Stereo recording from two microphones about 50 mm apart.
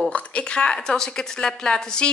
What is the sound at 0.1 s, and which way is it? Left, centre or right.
A woman's voice, left.